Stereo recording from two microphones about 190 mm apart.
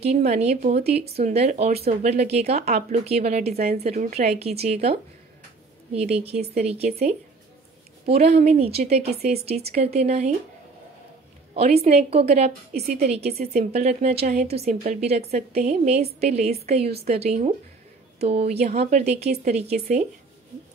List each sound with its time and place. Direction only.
0.0 s a woman's voice: 35° right (ahead or behind)
4.4 s a woman's voice: 35° right (ahead or behind)
6.0 s a woman's voice: 35° right (ahead or behind)
8.0 s a woman's voice: 35° right (ahead or behind)
11.5 s a woman's voice: 35° right (ahead or behind)
12.7 s a woman's voice: 55° right (ahead or behind)
13.0 s a woman's voice: 35° right (ahead or behind)
13.3 s a woman's voice: 55° right (ahead or behind)
13.6 s a woman's voice: 35° right (ahead or behind)